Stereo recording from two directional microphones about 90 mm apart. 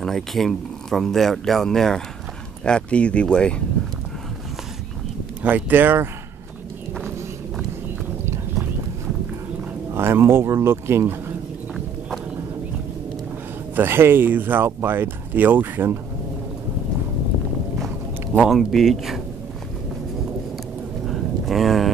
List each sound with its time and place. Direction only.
0.0 s speech: 5° left (ahead or behind)
5.4 s speech: 20° right (ahead or behind)
9.8 s speech: 30° right (ahead or behind)
13.7 s speech: 25° right (ahead or behind)
18.5 s speech: centre (ahead or behind)
21.0 s a sound: centre (ahead or behind)